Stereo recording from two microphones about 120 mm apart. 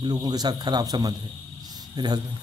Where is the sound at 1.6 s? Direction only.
35° right (ahead or behind).